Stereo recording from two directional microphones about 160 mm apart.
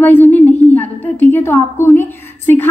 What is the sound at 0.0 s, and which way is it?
A woman's voice, 15° left (ahead or behind).